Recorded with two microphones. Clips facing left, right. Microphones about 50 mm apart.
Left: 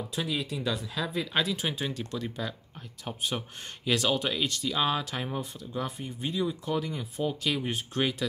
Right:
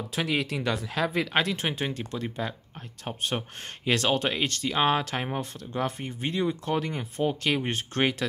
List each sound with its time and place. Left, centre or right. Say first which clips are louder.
0.1 s speech: right 6 dB; right
1.7 s speech: right 2 dB; right
5.4 s speech: right 4 dB; right